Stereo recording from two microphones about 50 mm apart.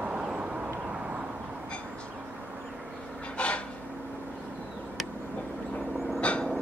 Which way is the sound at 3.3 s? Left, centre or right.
Left.